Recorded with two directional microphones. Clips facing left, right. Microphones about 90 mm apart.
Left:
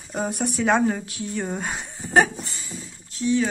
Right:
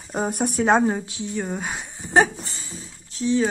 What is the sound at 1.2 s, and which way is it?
Speech, centre (ahead or behind).